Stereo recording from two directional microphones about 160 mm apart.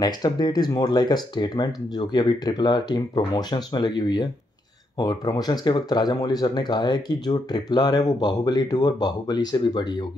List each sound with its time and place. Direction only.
0.0 s speech: 25° left (ahead or behind)